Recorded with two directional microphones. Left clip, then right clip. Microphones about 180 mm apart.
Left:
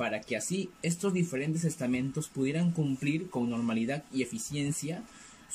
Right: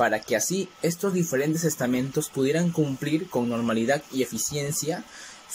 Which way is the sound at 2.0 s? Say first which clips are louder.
Right 8 dB; 45° right (ahead or behind).